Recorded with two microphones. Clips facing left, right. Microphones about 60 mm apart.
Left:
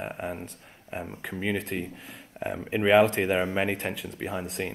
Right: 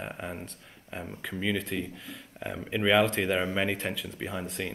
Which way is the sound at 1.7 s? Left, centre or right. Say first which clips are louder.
Left 1 dB; left.